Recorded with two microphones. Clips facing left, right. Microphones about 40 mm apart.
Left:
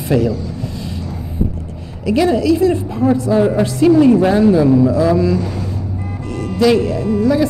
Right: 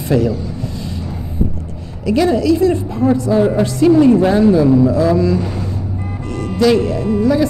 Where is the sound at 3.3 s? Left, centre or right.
Centre.